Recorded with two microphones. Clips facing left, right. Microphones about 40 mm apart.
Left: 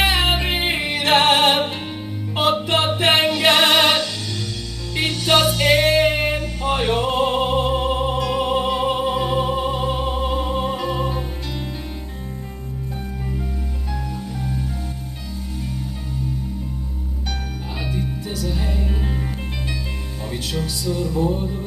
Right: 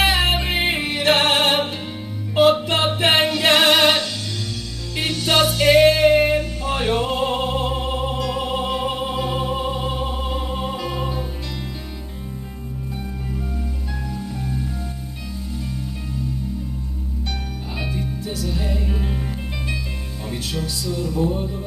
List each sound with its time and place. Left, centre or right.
0.0 s music: centre
4.9 s music: left
6.0 s music: centre
7.1 s opera: centre
10.7 s music: centre
18.4 s music: centre
20.6 s music: centre